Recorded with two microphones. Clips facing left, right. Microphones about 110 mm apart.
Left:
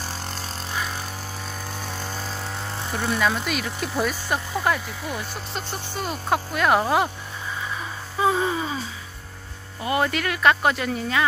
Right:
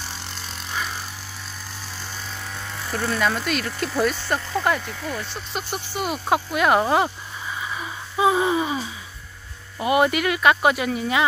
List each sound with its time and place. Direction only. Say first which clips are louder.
0.0 s vehicle: left 3 dB; 45° left (ahead or behind)
1.7 s vehicle: left 5 dB; 50° left (ahead or behind); by 2.9 s 30° left (ahead or behind)
2.9 s speech: right 1 dB; 15° left (ahead or behind)
3.2 s speech: right 1 dB; 5° left (ahead or behind)
5.5 s speech: right 2 dB; 10° right (ahead or behind)
7.7 s gasp: right 2 dB; 10° right (ahead or behind)
9.8 s speech: right 4 dB; 15° right (ahead or behind)